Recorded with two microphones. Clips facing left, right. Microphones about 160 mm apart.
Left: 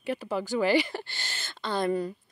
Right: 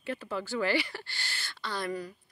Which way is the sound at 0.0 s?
15° left (ahead or behind).